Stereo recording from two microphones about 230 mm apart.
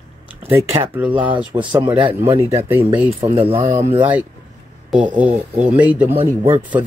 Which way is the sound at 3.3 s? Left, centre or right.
Right.